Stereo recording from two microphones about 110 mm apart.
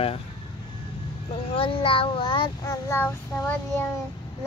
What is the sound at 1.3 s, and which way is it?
Child singing, 55° left (ahead or behind).